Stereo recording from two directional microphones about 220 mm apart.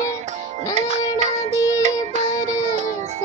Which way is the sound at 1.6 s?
15° left (ahead or behind).